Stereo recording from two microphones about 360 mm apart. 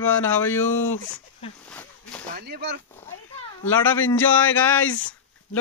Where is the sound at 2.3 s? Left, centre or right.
Right.